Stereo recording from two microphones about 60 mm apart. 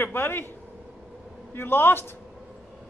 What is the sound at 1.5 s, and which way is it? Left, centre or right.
Speech, left.